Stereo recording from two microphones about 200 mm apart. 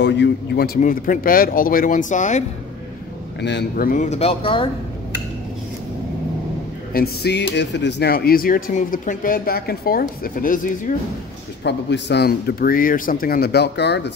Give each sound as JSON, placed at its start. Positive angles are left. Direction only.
{"t": 0.0, "sound": "a man's voice", "side_deg": 60}
{"t": 0.7, "sound": "speech", "side_deg": 45}
{"t": 3.3, "sound": "speech", "side_deg": 60}
{"t": 6.9, "sound": "speech", "side_deg": 50}
{"t": 11.6, "sound": "speech", "side_deg": 60}